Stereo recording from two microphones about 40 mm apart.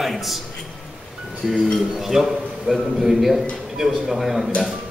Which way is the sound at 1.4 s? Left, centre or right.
Centre.